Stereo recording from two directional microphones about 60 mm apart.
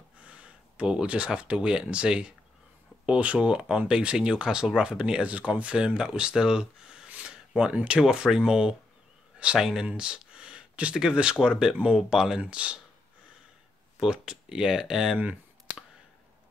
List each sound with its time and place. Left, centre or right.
0.2 s speech: right
7.1 s a sound: centre
8.0 s speech: centre
13.9 s speech: centre